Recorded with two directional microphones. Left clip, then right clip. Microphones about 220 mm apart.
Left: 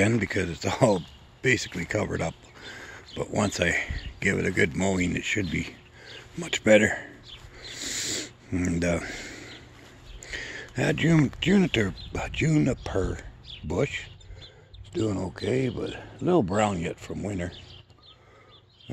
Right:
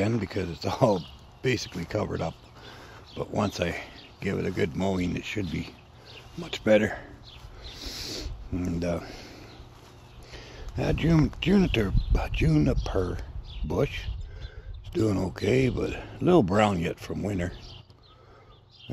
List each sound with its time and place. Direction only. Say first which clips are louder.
0.0 s speech: left 4 dB; 25° left (ahead or behind)
7.6 s a sound: left 5 dB; 25° left (ahead or behind)
10.2 s speech: left 10 dB; 30° left (ahead or behind); by 14.1 s 10° left (ahead or behind)
14.9 s speech: right 2 dB; 10° right (ahead or behind)